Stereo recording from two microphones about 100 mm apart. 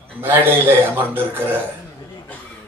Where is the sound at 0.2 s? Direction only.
20° right (ahead or behind).